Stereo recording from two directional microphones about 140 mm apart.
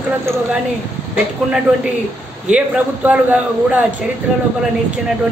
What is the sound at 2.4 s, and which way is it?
Speech, 10° right (ahead or behind).